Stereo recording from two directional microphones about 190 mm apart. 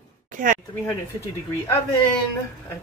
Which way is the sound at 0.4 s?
45° right (ahead or behind).